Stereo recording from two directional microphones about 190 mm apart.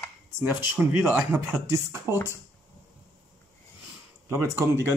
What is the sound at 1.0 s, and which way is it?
Speech, 10° right (ahead or behind).